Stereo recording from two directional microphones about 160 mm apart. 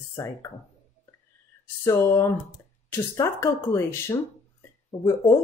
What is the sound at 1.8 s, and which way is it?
Speech, 15° left (ahead or behind).